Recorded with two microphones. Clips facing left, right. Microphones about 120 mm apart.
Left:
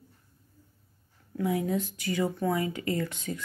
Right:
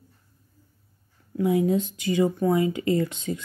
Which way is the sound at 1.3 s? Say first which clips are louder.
Right 6 dB; 20° right (ahead or behind).